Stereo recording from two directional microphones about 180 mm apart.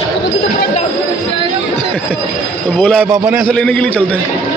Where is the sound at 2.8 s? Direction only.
5° right (ahead or behind).